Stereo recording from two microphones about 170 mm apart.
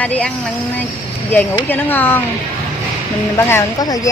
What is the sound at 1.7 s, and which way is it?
Speech, 10° left (ahead or behind).